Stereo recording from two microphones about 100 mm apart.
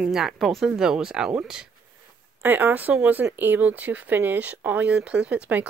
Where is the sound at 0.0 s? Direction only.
5° right (ahead or behind).